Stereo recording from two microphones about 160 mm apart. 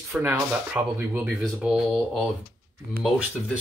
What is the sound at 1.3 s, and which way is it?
Speech, centre (ahead or behind).